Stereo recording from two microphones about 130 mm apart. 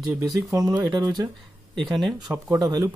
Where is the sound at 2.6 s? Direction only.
35° right (ahead or behind).